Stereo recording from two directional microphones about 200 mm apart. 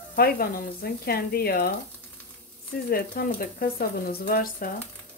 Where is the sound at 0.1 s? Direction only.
50° left (ahead or behind).